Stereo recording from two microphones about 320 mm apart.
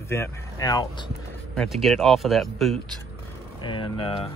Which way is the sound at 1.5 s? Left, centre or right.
Centre.